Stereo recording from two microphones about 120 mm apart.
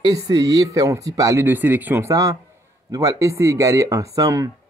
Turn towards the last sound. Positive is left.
turn(degrees=-30)  # may be behind; listen again after turning